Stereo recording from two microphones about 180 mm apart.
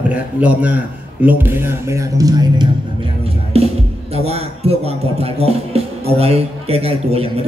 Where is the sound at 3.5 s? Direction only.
35° right (ahead or behind).